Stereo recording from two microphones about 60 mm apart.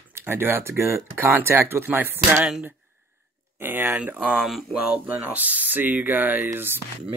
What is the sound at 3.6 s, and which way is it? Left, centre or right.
Speech, right.